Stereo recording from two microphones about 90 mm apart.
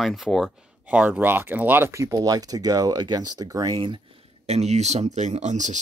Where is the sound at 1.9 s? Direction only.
35° right (ahead or behind).